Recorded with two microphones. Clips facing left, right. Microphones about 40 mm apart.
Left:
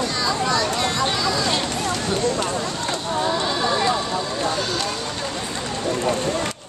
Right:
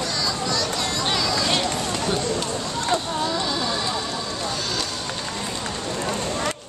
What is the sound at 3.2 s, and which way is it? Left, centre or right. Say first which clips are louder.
Music: left 3 dB; left.